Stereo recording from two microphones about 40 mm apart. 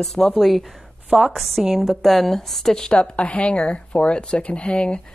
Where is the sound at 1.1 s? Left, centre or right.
Right.